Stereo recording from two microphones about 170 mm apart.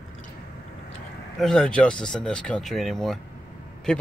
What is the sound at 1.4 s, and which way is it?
Speech, 5° left (ahead or behind).